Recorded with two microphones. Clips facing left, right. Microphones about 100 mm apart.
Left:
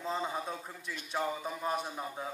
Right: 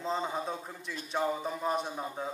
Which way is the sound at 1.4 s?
Centre (ahead or behind).